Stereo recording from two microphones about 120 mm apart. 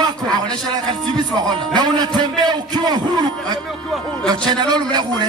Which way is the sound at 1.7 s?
35° right (ahead or behind).